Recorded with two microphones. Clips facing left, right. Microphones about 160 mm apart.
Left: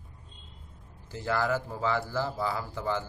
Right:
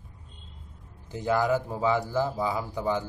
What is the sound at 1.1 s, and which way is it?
A man's voice, 15° right (ahead or behind).